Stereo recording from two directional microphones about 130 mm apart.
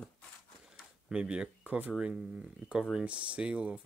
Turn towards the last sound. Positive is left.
turn(degrees=-10)  # may be behind; listen again after turning